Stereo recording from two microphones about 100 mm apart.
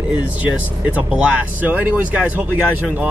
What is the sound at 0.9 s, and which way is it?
Speech, 15° right (ahead or behind).